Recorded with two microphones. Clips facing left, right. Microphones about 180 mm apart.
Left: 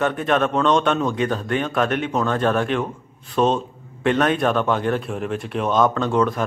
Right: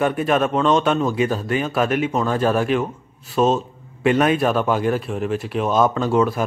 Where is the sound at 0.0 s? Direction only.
10° right (ahead or behind).